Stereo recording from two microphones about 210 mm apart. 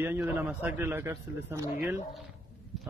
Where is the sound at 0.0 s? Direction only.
10° right (ahead or behind).